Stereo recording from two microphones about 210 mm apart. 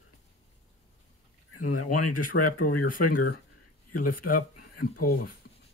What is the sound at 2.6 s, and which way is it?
Speech, 40° left (ahead or behind).